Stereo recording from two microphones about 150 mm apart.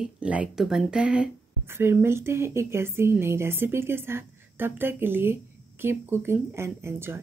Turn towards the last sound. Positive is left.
turn(degrees=-15)  # may be behind; listen again after turning